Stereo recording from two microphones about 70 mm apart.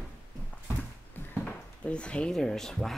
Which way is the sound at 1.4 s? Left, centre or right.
Centre.